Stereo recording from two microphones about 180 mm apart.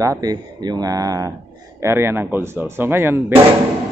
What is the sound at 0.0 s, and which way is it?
Speech, 20° right (ahead or behind).